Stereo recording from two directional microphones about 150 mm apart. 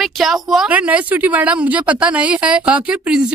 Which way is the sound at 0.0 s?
Centre (ahead or behind).